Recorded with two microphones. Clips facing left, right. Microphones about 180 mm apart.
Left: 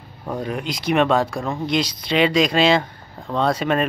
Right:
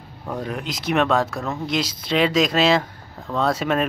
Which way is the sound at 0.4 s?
Centre (ahead or behind).